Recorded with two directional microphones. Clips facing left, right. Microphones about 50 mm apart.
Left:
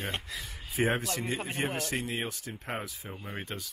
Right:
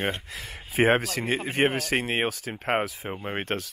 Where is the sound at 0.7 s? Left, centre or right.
Right.